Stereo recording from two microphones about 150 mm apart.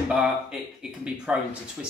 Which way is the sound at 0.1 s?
5° right (ahead or behind).